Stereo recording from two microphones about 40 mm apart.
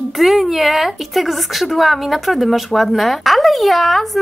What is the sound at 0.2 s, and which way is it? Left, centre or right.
Speech, centre.